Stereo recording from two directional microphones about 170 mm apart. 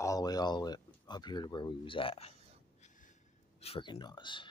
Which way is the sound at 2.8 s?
50° left (ahead or behind).